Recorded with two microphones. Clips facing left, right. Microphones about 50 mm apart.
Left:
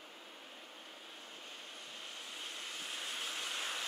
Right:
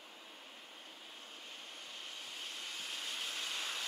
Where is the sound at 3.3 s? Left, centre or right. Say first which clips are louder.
Left 1 dB; left.